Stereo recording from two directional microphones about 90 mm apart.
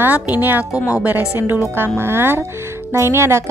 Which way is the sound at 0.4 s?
20° right (ahead or behind).